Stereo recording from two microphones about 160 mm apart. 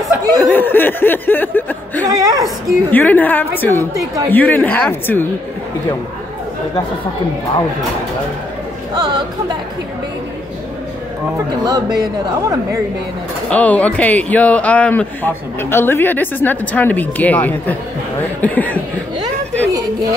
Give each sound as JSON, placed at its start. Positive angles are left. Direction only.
{"t": 0.5, "sound": "speech", "side_deg": 10}
{"t": 2.0, "sound": "speech", "side_deg": -25}
{"t": 2.9, "sound": "speech", "side_deg": 10}
{"t": 8.9, "sound": "speech", "side_deg": -25}
{"t": 11.6, "sound": "speech", "side_deg": -25}
{"t": 13.5, "sound": "speech", "side_deg": 10}
{"t": 19.6, "sound": "speech", "side_deg": -20}